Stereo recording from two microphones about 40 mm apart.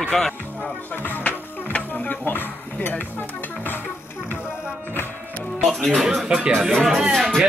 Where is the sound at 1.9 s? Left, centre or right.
Left.